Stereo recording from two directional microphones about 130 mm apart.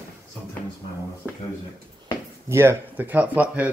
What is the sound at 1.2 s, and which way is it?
Speech, 10° right (ahead or behind).